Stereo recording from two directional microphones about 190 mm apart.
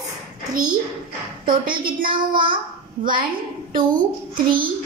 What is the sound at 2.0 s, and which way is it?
Speech, 50° right (ahead or behind).